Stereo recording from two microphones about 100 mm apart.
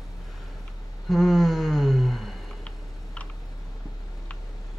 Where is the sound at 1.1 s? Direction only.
Centre (ahead or behind).